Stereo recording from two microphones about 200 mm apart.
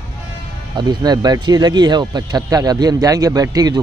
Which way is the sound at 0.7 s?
20° right (ahead or behind).